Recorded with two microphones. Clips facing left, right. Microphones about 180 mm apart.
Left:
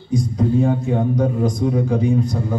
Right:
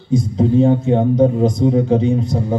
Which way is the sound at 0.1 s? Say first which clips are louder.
Right 4 dB; 25° right (ahead or behind).